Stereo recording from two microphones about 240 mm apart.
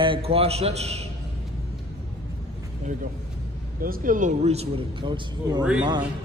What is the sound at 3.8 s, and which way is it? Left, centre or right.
Speech, right.